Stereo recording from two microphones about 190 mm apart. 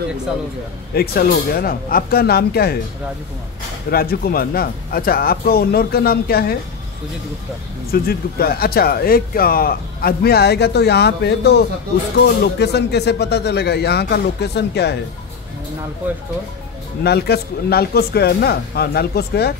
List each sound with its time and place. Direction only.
0.9 s speech: 55° left (ahead or behind)
3.9 s speech: 50° left (ahead or behind)
7.9 s speech: 55° left (ahead or behind)
17.0 s speech: 55° left (ahead or behind)